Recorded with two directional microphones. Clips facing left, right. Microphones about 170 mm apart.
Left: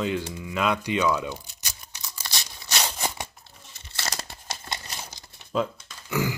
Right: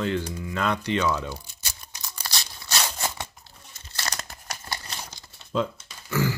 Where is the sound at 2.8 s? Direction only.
15° left (ahead or behind).